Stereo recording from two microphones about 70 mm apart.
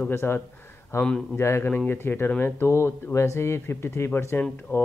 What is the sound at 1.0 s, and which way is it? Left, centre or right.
Speech, centre.